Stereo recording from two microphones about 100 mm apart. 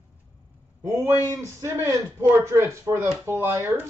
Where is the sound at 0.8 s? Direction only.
25° right (ahead or behind).